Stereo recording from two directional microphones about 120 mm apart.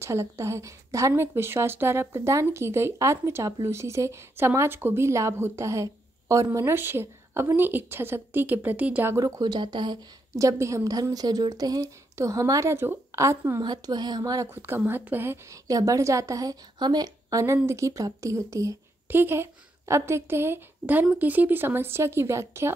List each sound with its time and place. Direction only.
0.0 s a woman's voice: 25° right (ahead or behind)
9.1 s speech: 35° right (ahead or behind)
10.3 s a woman's voice: 25° right (ahead or behind)
13.6 s a woman's voice: 35° right (ahead or behind)